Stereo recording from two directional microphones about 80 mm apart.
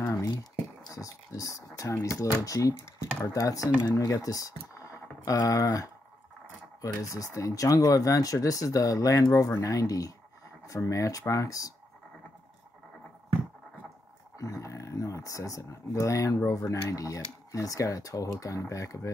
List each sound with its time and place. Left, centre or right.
0.0 s speech: left
14.3 s speech: left